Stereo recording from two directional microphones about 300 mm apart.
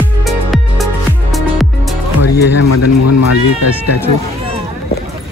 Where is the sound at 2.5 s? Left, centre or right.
Left.